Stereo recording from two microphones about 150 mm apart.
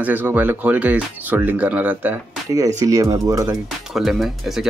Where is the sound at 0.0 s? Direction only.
10° right (ahead or behind).